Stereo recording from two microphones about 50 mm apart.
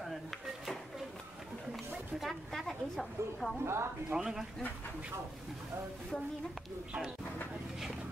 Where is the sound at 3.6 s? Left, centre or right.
Right.